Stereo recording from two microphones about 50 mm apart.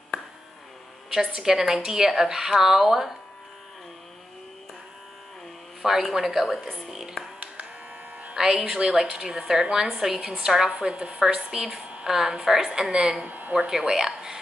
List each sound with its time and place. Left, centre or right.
1.1 s a woman's voice: centre
5.8 s a woman's voice: centre
8.4 s a woman's voice: centre
13.2 s speech: right
13.7 s a woman's voice: centre